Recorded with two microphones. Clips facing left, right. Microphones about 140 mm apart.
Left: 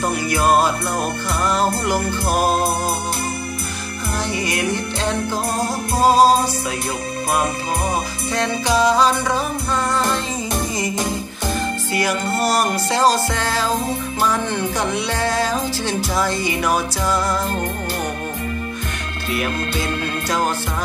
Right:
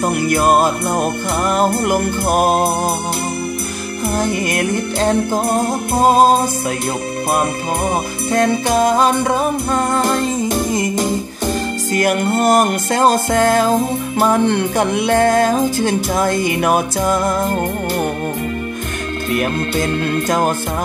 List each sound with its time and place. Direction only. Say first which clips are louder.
0.1 s music: right 3 dB; 50° right (ahead or behind)
4.1 s music: right 4 dB; 50° right (ahead or behind)
8.3 s music: right 5 dB; 50° right (ahead or behind)
11.9 s music: right 6 dB; 50° right (ahead or behind)
20.2 s music: right 3 dB; 50° right (ahead or behind)